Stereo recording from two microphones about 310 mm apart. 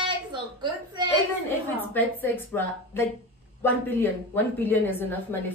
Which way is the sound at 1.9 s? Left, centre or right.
Centre.